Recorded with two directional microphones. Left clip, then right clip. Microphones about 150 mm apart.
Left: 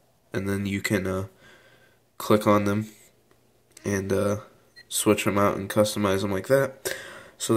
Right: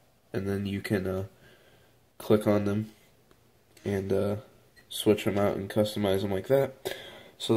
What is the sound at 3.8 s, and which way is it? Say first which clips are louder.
Speech: left 3 dB; 15° left (ahead or behind).